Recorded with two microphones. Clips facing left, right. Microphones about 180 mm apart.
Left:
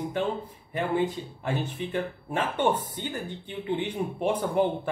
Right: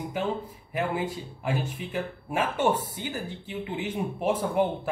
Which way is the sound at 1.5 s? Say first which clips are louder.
Left 1 dB; 10° right (ahead or behind).